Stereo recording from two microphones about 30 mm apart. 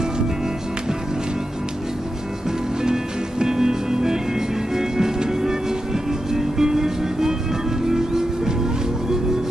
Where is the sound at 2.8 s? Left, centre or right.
Right.